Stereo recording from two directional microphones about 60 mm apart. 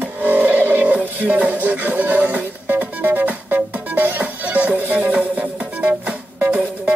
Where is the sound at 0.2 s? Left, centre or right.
Right.